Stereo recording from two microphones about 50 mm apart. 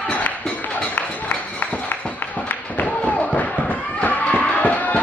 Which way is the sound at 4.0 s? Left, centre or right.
Left.